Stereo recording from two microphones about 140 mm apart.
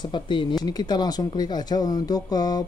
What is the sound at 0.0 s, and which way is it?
Speech, 35° left (ahead or behind).